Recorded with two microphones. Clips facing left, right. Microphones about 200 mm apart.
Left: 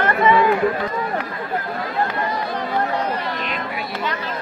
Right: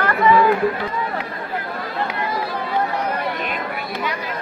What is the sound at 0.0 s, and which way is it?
Chatter, 20° left (ahead or behind).